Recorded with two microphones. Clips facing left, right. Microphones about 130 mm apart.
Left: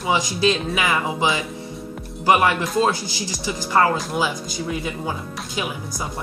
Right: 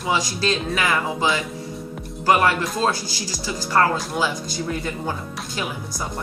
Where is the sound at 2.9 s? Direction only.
20° left (ahead or behind).